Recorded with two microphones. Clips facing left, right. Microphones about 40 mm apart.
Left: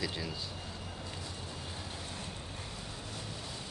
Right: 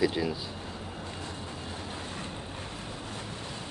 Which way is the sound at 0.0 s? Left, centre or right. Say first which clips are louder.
Right 10 dB; centre.